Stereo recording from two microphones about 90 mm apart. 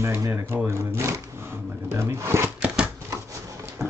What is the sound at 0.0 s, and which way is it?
Speech, 30° right (ahead or behind).